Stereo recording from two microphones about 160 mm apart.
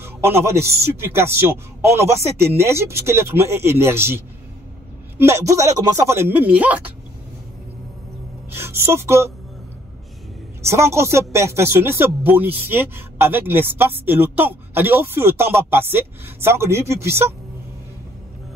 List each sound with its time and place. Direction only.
0.0 s speech: 15° right (ahead or behind)
5.2 s speech: 20° right (ahead or behind)
8.5 s a woman's voice: 15° right (ahead or behind)
10.7 s speech: 15° right (ahead or behind)